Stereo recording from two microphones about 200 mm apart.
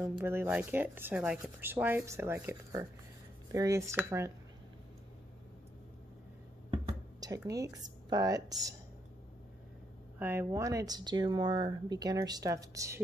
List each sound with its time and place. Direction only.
0.0 s speech: 10° right (ahead or behind)
6.7 s speech: 20° right (ahead or behind)
10.1 s speech: 10° right (ahead or behind)